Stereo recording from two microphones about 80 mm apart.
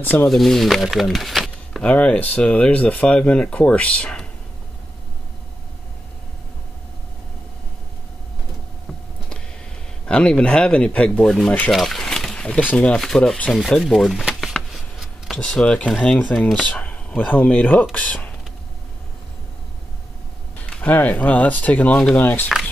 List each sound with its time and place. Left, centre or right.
0.0 s speech: left
0.3 s speech: centre
1.8 s speech: centre
10.0 s speech: centre
11.7 s speech: centre
13.5 s a sound: centre
15.3 s speech: centre
20.6 s speech: centre